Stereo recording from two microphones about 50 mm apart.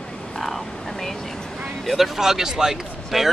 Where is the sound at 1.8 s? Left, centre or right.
Centre.